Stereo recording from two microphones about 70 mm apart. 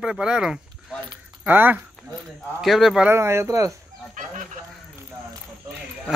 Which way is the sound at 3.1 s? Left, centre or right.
Right.